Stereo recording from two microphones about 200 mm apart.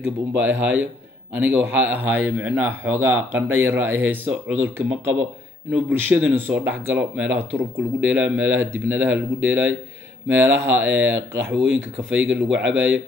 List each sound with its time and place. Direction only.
0.4 s speech: 10° right (ahead or behind)
5.9 s speech: 10° right (ahead or behind)
11.6 s speech: 70° right (ahead or behind)